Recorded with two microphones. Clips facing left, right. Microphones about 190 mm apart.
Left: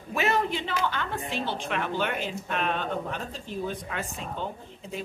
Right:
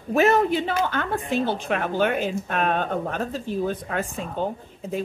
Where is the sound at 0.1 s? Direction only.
45° right (ahead or behind).